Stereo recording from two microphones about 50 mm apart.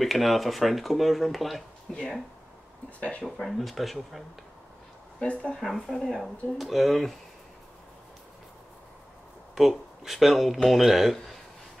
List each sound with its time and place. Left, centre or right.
0.0 s speech: centre
3.0 s speech: left
3.3 s speech: centre
5.2 s speech: left
5.6 s speech: centre
9.6 s speech: centre